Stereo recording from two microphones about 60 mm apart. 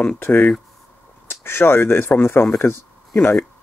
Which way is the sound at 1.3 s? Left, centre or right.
Left.